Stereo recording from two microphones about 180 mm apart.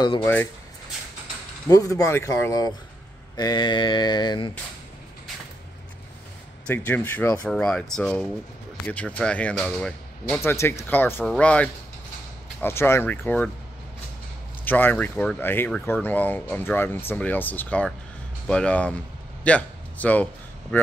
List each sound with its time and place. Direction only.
0.2 s speech: 10° left (ahead or behind)
1.7 s speech: 20° left (ahead or behind)
3.3 s mantra: 25° left (ahead or behind)
6.7 s speech: 10° left (ahead or behind)
14.6 s a man's voice: 10° left (ahead or behind)